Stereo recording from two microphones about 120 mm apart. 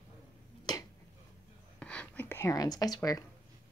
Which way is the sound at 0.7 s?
35° left (ahead or behind).